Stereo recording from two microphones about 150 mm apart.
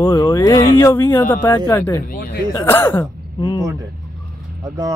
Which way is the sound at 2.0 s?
80° left.